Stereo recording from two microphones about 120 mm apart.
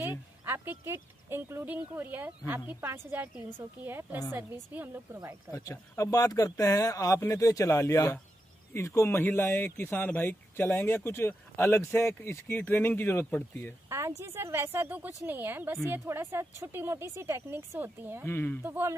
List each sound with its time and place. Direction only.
0.0 s a woman's voice: 20° right (ahead or behind)
5.5 s speech: 25° left (ahead or behind)
13.8 s a sound: 25° right (ahead or behind)
14.2 s a woman's voice: 20° right (ahead or behind)
18.2 s speech: 20° left (ahead or behind)
18.6 s a woman's voice: 20° right (ahead or behind)